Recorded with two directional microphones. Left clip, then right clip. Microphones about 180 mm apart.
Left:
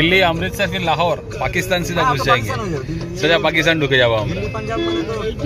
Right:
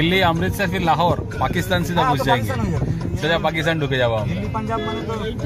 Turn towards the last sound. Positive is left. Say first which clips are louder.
# left 5 dB
turn(degrees=0)  # may be behind; listen again after turning